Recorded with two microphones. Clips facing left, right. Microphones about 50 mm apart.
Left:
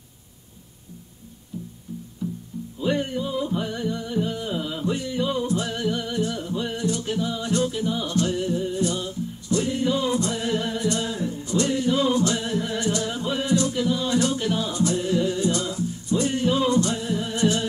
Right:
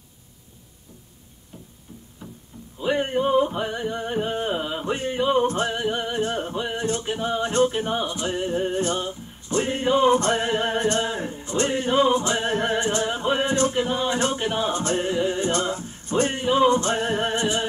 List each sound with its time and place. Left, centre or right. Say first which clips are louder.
2.2 s music: left 11 dB; right
2.8 s music: right 1 dB; right
3.1 s music: right 6 dB; right
5.7 s music: right 1 dB; right
8.0 s music: left 2 dB; right
16.3 s music: right 3 dB; right
17.0 s music: right 4 dB; right
17.4 s music: left 2 dB; right